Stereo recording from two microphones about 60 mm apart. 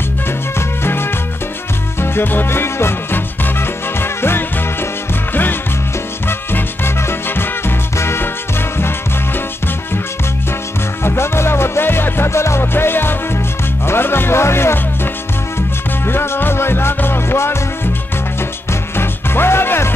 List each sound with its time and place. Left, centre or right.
0.6 s music: left
11.1 s music: left
13.8 s speech: left
16.1 s music: left
18.7 s music: left